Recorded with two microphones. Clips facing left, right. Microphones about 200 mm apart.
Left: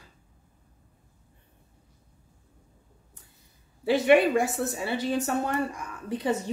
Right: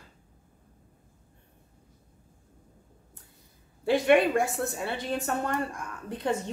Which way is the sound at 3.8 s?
5° left (ahead or behind).